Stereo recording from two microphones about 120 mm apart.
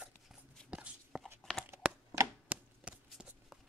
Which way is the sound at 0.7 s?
10° right (ahead or behind).